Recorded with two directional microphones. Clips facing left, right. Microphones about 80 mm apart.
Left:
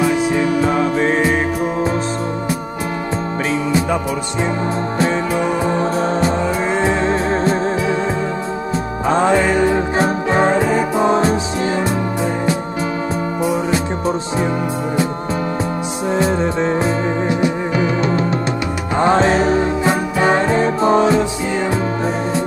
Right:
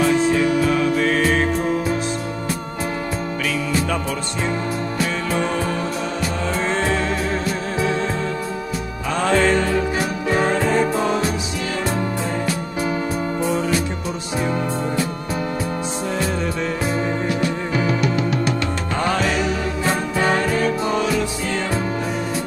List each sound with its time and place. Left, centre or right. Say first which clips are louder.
0.6 s music: left 2 dB; left
3.4 s music: left 4 dB; left
5.3 s music: left 4 dB; centre
6.6 s music: left 2 dB; centre
8.7 s music: left 9 dB; left
11.1 s music: left 6 dB; left
13.4 s music: left 3 dB; centre
16.1 s music: left 8 dB; left
19.8 s music: left 4 dB; left
21.5 s music: left 4 dB; centre